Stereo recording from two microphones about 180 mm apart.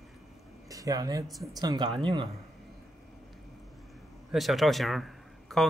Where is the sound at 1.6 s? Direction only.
25° right (ahead or behind).